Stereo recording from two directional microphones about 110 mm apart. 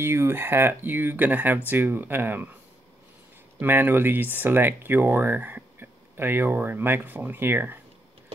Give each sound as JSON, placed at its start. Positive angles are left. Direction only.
{"t": 0.0, "sound": "speech", "side_deg": -20}
{"t": 3.5, "sound": "speech", "side_deg": -20}